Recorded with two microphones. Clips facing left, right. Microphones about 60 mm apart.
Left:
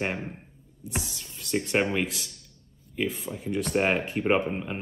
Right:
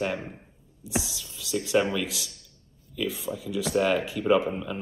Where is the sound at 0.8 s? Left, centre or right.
Left.